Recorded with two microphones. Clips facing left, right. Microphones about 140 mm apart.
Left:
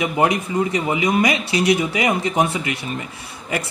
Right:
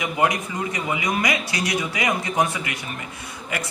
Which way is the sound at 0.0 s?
30° left (ahead or behind).